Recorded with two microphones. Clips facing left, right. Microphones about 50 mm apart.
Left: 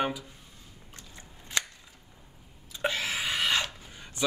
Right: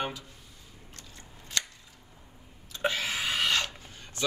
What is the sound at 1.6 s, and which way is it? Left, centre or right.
Scissors, left.